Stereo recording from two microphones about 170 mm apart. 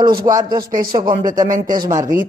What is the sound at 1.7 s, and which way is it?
Speech, 20° right (ahead or behind).